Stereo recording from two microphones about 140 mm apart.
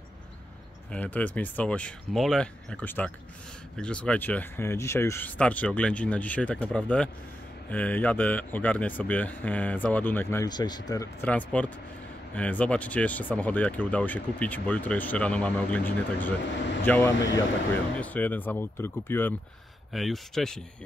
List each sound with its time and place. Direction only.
0.9 s speech: 10° left (ahead or behind)
10.4 s speech: 30° left (ahead or behind)
11.2 s speech: 10° left (ahead or behind)
19.9 s speech: centre (ahead or behind)